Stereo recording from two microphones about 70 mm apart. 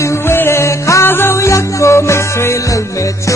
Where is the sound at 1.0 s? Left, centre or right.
Left.